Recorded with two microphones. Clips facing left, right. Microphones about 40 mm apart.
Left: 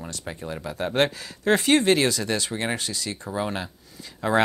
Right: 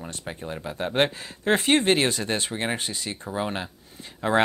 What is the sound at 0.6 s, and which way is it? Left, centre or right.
Speech, right.